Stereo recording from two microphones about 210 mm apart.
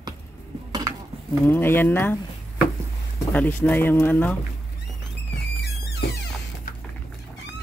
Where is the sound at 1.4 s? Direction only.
10° left (ahead or behind).